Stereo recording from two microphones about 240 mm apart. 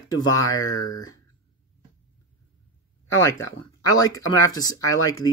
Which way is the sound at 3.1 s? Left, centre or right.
Centre.